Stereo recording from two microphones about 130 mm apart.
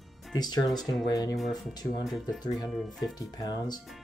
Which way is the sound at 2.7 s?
Centre (ahead or behind).